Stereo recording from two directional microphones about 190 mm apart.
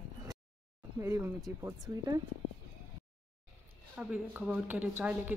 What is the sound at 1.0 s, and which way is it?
Speech, 10° right (ahead or behind).